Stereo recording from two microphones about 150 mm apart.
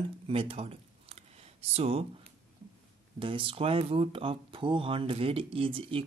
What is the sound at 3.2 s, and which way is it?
Speech, 35° right (ahead or behind).